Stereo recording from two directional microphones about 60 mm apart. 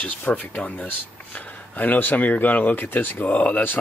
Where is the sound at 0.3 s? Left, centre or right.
Left.